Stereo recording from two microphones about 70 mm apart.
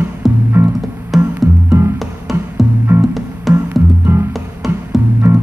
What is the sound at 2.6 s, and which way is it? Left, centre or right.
Music, centre.